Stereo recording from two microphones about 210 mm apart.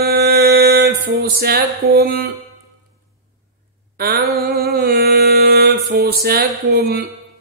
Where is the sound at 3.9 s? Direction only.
45° right (ahead or behind).